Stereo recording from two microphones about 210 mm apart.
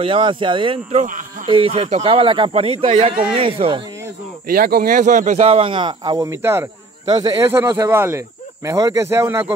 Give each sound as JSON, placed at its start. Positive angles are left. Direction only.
{"t": 0.0, "sound": "speech", "side_deg": -25}
{"t": 1.0, "sound": "speech", "side_deg": -40}
{"t": 1.5, "sound": "speech", "side_deg": -25}
{"t": 4.5, "sound": "speech", "side_deg": -45}